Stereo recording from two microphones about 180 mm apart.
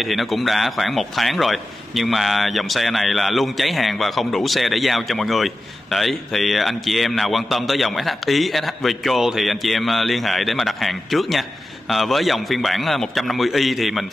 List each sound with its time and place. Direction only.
0.0 s a man's voice: centre (ahead or behind)